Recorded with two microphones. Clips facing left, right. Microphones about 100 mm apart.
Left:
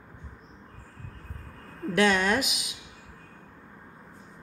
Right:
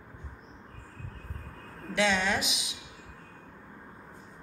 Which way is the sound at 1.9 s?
50° left (ahead or behind).